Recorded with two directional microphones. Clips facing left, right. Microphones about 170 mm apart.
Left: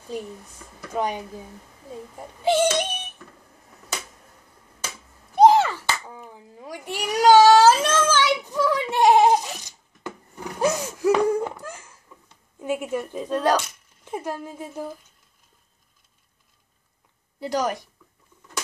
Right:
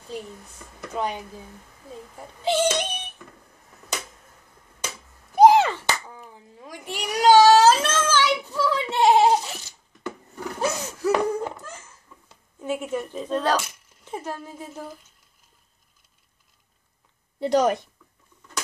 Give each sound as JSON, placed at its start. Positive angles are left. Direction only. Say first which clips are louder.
{"t": 0.9, "sound": "speech", "louder": "left 2 dB", "side_deg": 10}
{"t": 2.4, "sound": "speech", "louder": "left 2 dB", "side_deg": 10}
{"t": 5.3, "sound": "a sound", "louder": "even", "side_deg": -10}
{"t": 6.0, "sound": "baby cry", "louder": "left 2 dB", "side_deg": 15}
{"t": 10.6, "sound": "a sound", "louder": "left 4 dB", "side_deg": 15}
{"t": 12.5, "sound": "speech", "louder": "left 1 dB", "side_deg": 15}
{"t": 17.4, "sound": "speech", "louder": "right 5 dB", "side_deg": -25}